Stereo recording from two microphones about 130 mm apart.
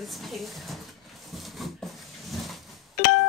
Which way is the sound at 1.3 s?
Centre (ahead or behind).